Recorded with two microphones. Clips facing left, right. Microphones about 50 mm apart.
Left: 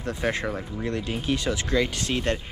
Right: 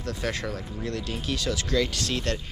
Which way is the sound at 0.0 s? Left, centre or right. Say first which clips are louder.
Left 3 dB; left.